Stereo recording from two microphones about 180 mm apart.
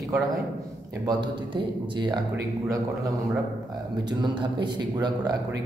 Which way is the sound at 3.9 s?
25° right (ahead or behind).